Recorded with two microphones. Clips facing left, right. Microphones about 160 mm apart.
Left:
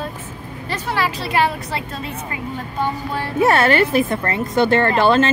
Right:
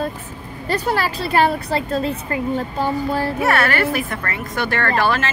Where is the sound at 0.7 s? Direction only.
40° right (ahead or behind).